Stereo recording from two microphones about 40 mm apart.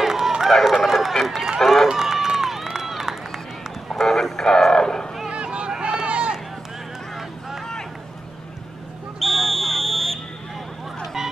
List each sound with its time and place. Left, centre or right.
0.0 s run: centre
1.2 s speech: centre
1.6 s run: centre
1.9 s run: centre
3.9 s a sound: centre
5.3 s a sound: right
5.7 s run: centre
7.2 s vehicle: centre
9.2 s fire alarm: centre